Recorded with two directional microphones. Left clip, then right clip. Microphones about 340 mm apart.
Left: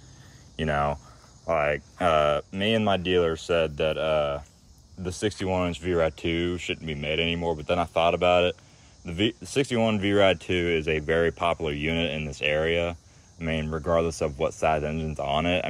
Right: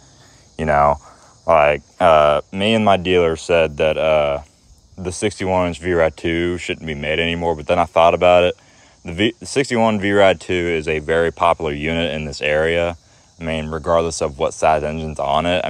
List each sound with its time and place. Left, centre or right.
0.6 s speech: centre
5.4 s speech: centre